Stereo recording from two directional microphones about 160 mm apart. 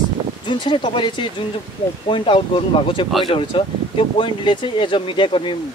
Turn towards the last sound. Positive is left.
turn(degrees=30)  # may be behind; listen again after turning